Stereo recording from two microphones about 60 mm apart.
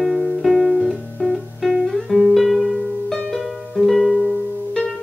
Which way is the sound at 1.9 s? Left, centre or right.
Centre.